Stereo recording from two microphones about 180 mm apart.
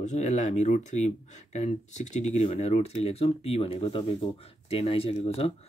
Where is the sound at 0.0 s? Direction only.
40° left (ahead or behind).